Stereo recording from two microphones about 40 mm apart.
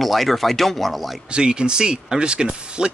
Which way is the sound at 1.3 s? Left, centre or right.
Right.